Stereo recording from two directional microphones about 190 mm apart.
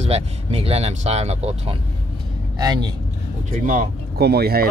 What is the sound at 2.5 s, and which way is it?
Speech, 20° right (ahead or behind).